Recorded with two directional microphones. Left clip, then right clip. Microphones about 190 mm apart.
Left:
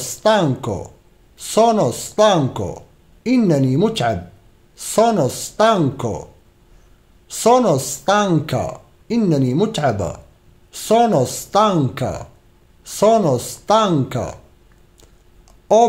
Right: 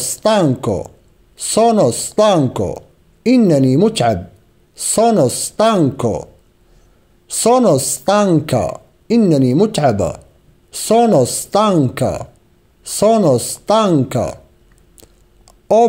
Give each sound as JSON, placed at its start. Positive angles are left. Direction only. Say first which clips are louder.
{"t": 0.0, "sound": "speech", "louder": "right 2 dB", "side_deg": -30}
{"t": 7.2, "sound": "speech", "louder": "right 2 dB", "side_deg": -30}
{"t": 15.0, "sound": "a sound", "louder": "right 6 dB", "side_deg": -30}